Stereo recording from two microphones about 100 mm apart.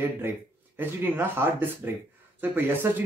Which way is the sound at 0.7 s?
20° right (ahead or behind).